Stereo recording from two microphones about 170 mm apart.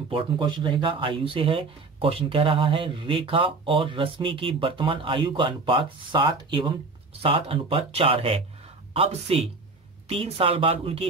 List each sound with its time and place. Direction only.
0.1 s speech: 30° right (ahead or behind)